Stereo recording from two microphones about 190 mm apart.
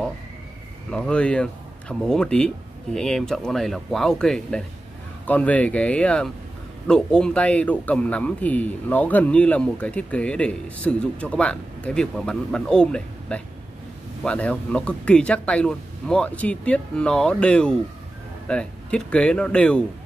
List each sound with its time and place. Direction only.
0.8 s speech: 5° left (ahead or behind)